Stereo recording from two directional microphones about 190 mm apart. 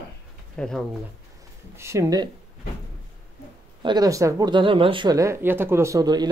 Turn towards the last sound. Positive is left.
turn(degrees=-20)  # may be behind; listen again after turning